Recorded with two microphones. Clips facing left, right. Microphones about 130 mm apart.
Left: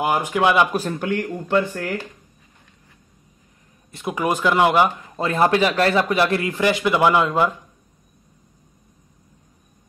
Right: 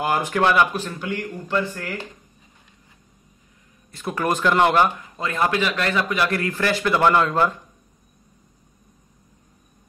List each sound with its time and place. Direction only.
0.0 s speech: 10° left (ahead or behind)
0.7 s speech: 45° left (ahead or behind)
3.9 s speech: 20° left (ahead or behind)
4.2 s speech: 10° left (ahead or behind)
5.1 s speech: 35° left (ahead or behind); by 7.5 s 10° left (ahead or behind)